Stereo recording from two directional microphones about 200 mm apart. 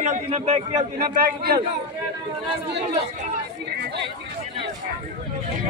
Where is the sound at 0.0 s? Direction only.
35° right (ahead or behind).